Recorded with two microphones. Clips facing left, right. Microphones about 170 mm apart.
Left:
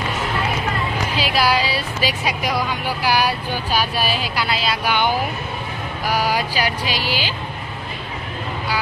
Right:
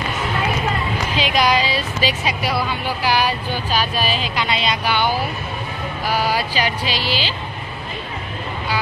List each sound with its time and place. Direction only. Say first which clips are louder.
1.1 s speech: right 1 dB; 5° left (ahead or behind)
4.8 s speech: left 2 dB; 15° left (ahead or behind)